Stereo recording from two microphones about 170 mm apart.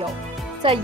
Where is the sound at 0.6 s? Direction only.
30° right (ahead or behind).